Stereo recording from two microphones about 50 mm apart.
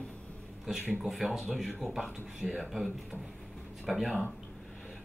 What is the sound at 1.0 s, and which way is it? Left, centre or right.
Speech, centre.